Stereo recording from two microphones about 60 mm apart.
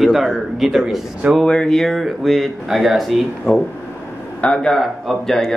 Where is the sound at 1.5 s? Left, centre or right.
Centre.